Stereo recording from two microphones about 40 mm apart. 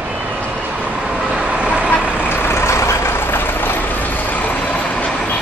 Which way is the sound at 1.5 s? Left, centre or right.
Right.